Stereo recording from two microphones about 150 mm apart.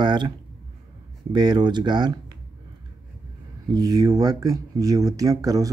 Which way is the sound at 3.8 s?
25° right (ahead or behind).